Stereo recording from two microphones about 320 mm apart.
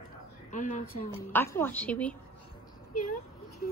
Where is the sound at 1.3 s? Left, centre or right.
Centre.